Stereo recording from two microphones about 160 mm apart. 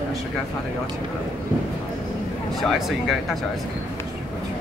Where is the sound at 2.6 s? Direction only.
Centre (ahead or behind).